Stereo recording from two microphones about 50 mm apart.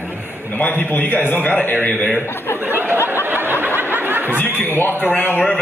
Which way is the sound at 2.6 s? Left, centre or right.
Right.